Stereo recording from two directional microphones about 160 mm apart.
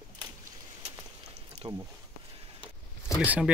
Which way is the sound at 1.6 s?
30° right (ahead or behind).